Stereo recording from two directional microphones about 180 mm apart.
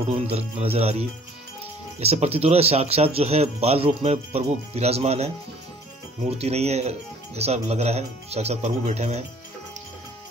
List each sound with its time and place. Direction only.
0.3 s speech: 35° right (ahead or behind)